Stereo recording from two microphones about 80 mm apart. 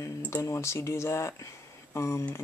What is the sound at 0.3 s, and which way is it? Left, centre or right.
Speech, left.